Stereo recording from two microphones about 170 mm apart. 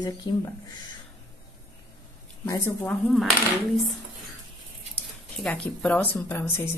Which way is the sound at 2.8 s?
Centre (ahead or behind).